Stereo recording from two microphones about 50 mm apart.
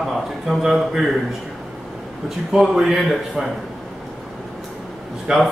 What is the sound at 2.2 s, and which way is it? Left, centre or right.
A man's voice, centre.